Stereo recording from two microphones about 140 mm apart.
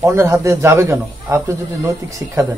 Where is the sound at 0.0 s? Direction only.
20° right (ahead or behind).